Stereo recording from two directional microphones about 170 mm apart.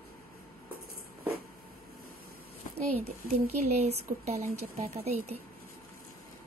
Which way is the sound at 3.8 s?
40° right (ahead or behind).